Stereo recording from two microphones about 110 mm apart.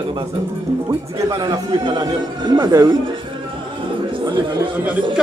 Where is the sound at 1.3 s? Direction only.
35° right (ahead or behind).